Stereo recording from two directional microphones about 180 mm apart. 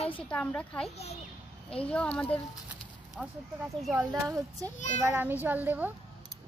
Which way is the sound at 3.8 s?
5° right (ahead or behind).